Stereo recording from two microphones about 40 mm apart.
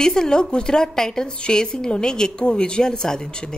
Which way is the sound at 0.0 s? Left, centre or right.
Centre.